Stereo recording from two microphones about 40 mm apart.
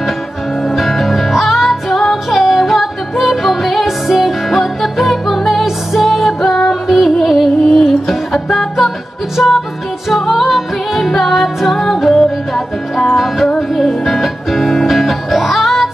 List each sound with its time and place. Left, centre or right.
0.7 s music: centre